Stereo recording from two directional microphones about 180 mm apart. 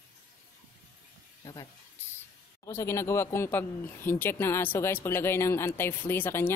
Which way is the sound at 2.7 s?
15° left (ahead or behind).